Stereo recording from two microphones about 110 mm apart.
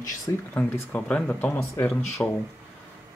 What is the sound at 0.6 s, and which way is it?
Speech, 15° left (ahead or behind).